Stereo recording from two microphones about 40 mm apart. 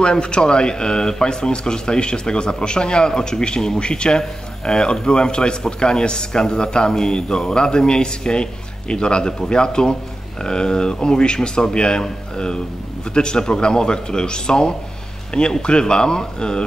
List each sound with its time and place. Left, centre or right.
0.0 s a man's voice: left